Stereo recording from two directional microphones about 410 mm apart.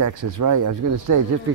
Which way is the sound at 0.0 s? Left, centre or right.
Right.